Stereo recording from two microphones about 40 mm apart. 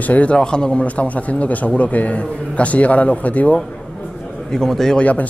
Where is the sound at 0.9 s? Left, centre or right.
Left.